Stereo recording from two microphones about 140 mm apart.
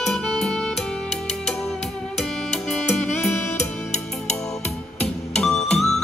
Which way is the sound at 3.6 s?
55° left (ahead or behind).